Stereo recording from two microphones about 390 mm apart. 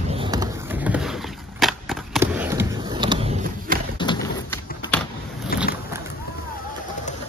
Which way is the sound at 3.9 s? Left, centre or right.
Centre.